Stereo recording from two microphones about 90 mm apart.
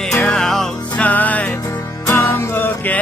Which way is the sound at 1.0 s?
15° left (ahead or behind).